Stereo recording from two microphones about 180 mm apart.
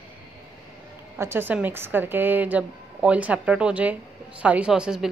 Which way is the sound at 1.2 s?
10° right (ahead or behind).